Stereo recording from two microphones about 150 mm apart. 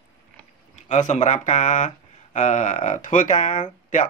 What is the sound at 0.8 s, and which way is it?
Speech, 55° left (ahead or behind).